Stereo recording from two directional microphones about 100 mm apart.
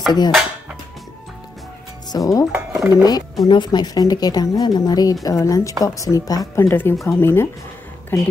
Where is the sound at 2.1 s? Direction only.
35° left (ahead or behind).